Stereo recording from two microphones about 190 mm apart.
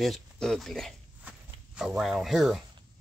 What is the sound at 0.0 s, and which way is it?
Speech, centre (ahead or behind).